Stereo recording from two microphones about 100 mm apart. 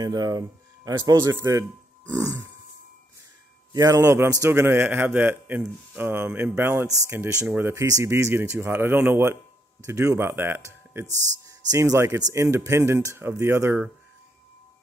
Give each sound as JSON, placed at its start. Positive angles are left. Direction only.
{"t": 0.0, "sound": "speech", "side_deg": -40}
{"t": 1.2, "sound": "speech", "side_deg": -25}
{"t": 2.1, "sound": "grunt", "side_deg": -35}
{"t": 3.7, "sound": "speech", "side_deg": -35}
{"t": 7.8, "sound": "speech", "side_deg": -30}
{"t": 11.1, "sound": "speech", "side_deg": -35}